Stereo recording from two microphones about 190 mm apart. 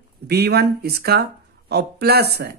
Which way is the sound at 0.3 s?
60° right (ahead or behind).